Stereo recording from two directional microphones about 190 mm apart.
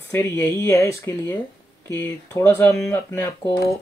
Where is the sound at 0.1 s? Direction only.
15° left (ahead or behind).